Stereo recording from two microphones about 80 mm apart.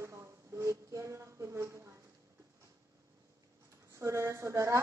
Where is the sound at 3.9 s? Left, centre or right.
Right.